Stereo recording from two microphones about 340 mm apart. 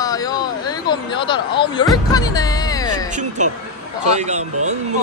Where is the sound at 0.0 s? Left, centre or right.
Centre.